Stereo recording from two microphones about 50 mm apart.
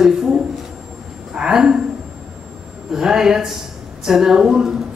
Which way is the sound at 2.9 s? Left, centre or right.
Centre.